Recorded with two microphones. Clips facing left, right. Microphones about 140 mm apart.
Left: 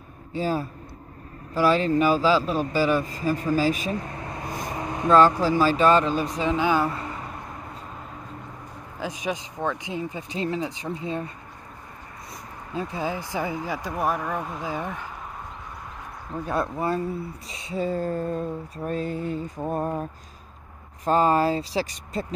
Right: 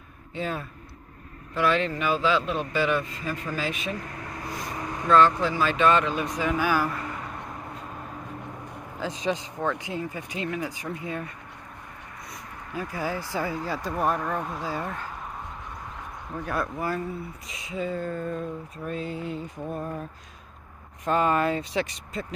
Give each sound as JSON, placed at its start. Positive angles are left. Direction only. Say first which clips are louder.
{"t": 0.3, "sound": "speech", "louder": "left 5 dB", "side_deg": 35}
{"t": 1.5, "sound": "a sound", "louder": "left 4 dB", "side_deg": 35}
{"t": 3.9, "sound": "vehicle", "louder": "left 4 dB", "side_deg": 25}
{"t": 5.4, "sound": "a sound", "louder": "left 3 dB", "side_deg": 35}
{"t": 9.0, "sound": "speech", "louder": "right 1 dB", "side_deg": 15}
{"t": 12.7, "sound": "speech", "louder": "left 2 dB", "side_deg": 20}
{"t": 14.6, "sound": "speech", "louder": "left 1 dB", "side_deg": 15}
{"t": 16.4, "sound": "speech", "louder": "left 3 dB", "side_deg": 25}
{"t": 17.5, "sound": "a sound", "louder": "left 3 dB", "side_deg": 30}